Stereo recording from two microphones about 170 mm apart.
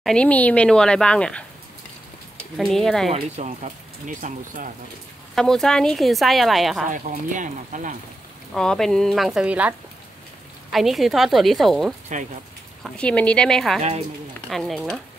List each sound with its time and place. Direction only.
0.0 s speech: 5° left (ahead or behind)
2.5 s speech: centre (ahead or behind)
3.1 s speech: 40° right (ahead or behind)
5.3 s speech: centre (ahead or behind)
6.9 s speech: 50° right (ahead or behind)
8.5 s speech: 5° left (ahead or behind)
12.1 s speech: 45° right (ahead or behind)
12.8 s speech: 5° left (ahead or behind)